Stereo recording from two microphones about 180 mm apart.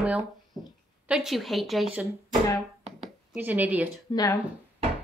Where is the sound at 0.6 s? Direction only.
20° left (ahead or behind).